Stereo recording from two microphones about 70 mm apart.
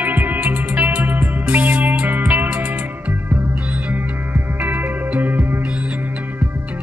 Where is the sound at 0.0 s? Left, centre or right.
Right.